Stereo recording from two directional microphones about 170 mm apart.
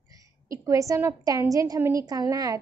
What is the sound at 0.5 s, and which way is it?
A woman's voice, 20° right (ahead or behind).